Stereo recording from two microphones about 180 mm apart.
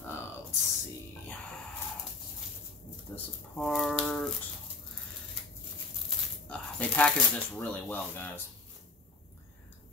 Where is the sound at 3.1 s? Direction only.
5° left (ahead or behind).